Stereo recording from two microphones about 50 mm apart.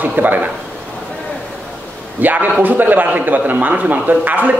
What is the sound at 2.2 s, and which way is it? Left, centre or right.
A man's voice, right.